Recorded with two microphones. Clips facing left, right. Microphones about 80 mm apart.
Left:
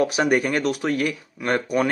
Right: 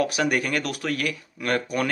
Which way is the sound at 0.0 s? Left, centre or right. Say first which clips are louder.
Left 4 dB; left.